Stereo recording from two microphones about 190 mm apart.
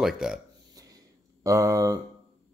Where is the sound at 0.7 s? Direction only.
20° right (ahead or behind).